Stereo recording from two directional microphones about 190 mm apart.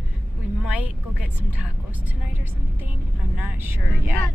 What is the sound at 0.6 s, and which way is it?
Vehicle, 5° right (ahead or behind).